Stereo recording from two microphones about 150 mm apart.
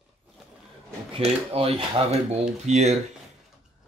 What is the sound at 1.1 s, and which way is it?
Speech, 40° right (ahead or behind).